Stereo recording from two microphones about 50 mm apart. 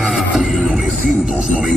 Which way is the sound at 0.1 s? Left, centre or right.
Centre.